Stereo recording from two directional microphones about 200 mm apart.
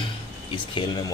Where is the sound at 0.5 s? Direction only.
20° left (ahead or behind).